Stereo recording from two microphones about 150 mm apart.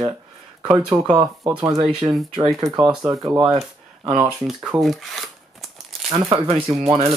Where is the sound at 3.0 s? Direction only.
20° right (ahead or behind).